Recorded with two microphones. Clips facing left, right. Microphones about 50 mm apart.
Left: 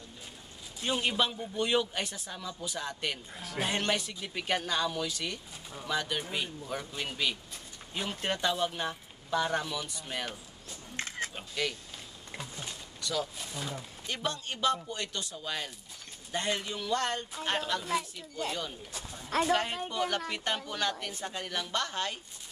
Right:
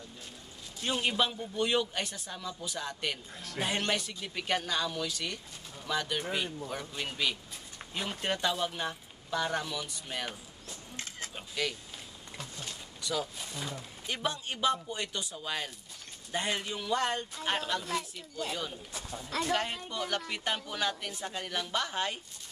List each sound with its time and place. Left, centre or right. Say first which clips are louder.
0.8 s speech: even; centre
11.0 s music: left 7 dB; left
11.3 s speech: right 2 dB; centre
12.4 s a sound: left 1 dB; centre
13.0 s speech: even; centre
14.0 s speech: right 1 dB; centre
17.5 s speech: left 1 dB; centre